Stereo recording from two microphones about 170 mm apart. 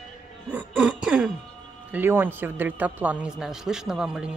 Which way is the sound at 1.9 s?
10° right (ahead or behind).